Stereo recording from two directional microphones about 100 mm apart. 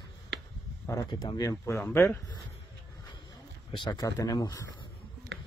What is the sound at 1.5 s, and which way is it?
Speech, 25° left (ahead or behind).